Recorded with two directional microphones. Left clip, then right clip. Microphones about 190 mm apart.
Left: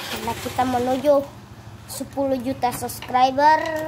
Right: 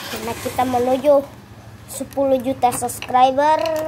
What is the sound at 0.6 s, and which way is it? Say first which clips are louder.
Speech: right 3 dB; 5° left (ahead or behind).